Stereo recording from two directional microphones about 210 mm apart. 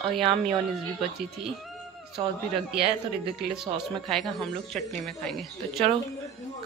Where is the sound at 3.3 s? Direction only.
Centre (ahead or behind).